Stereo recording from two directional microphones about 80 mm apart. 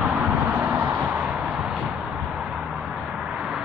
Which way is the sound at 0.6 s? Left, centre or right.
Right.